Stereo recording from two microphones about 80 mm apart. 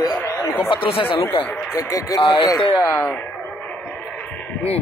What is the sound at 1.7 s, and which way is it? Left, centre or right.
Speech, left.